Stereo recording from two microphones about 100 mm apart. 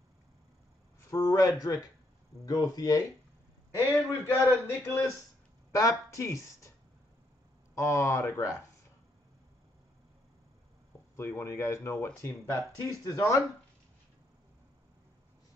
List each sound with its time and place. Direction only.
1.1 s speech: 40° left (ahead or behind)
3.7 s speech: 25° left (ahead or behind)
7.7 s speech: 30° left (ahead or behind)
11.1 s speech: 25° left (ahead or behind)